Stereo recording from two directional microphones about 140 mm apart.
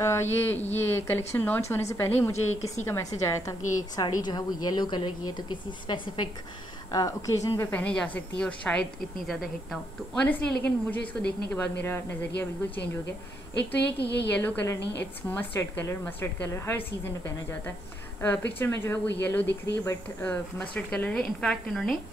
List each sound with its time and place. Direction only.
0.0 s a woman's voice: 20° left (ahead or behind)
2.5 s a woman's voice: 50° left (ahead or behind)
3.2 s a woman's voice: 25° left (ahead or behind)
7.7 s a woman's voice: 10° left (ahead or behind)
14.3 s speech: 10° left (ahead or behind)